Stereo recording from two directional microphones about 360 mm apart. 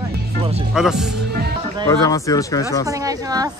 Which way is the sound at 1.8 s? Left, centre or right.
Centre.